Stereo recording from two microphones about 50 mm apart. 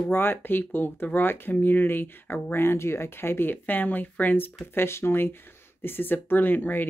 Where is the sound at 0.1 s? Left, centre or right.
Left.